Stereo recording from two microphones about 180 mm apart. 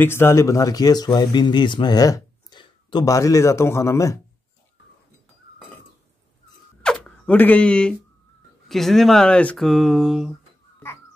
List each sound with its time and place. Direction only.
0.0 s speech: 15° left (ahead or behind)
6.8 s a sound: 5° left (ahead or behind)
8.6 s speech: centre (ahead or behind)